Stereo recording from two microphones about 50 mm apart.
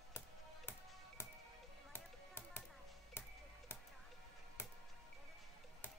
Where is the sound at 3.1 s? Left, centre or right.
Left.